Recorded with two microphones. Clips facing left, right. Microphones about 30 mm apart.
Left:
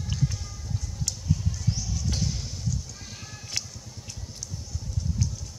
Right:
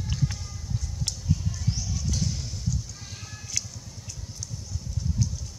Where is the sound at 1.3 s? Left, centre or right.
Centre.